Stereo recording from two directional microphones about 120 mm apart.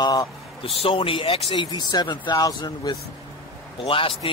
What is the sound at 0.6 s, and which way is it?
A man's voice, 50° left (ahead or behind).